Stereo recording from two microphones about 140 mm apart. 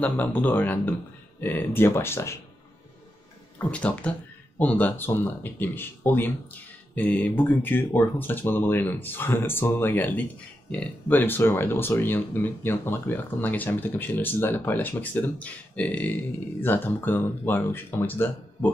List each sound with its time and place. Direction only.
0.0 s speech: 10° left (ahead or behind)
3.5 s speech: 10° left (ahead or behind)